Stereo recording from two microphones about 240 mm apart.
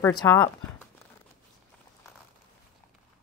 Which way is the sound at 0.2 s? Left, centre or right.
Centre.